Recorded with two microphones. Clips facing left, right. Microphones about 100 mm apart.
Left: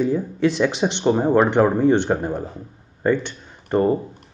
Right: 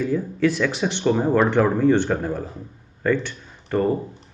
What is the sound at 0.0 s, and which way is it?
Speech, 20° left (ahead or behind).